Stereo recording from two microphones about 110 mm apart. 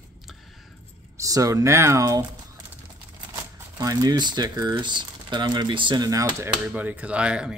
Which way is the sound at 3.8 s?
35° right (ahead or behind).